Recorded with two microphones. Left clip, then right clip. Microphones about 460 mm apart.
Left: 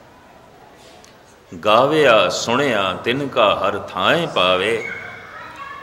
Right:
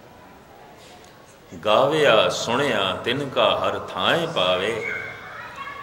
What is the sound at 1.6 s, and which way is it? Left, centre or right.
A man's voice, centre.